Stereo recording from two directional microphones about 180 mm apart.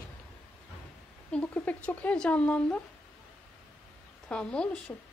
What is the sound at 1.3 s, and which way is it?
Speech, 5° left (ahead or behind).